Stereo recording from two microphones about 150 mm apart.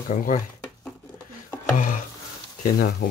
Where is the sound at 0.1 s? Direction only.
55° left (ahead or behind).